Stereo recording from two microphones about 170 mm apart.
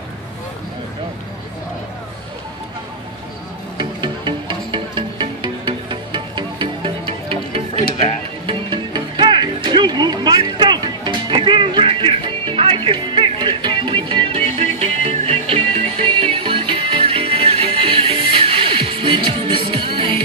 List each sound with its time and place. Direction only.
3.7 s music: 25° right (ahead or behind)